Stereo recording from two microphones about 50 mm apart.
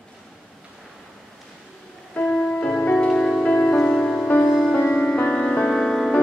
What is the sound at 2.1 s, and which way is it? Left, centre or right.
Music, left.